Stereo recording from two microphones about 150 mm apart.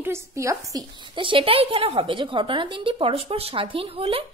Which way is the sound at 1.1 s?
35° right (ahead or behind).